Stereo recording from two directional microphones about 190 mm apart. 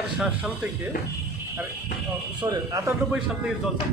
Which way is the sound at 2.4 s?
20° right (ahead or behind).